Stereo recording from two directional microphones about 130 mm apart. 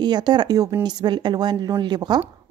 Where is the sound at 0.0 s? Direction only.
35° right (ahead or behind).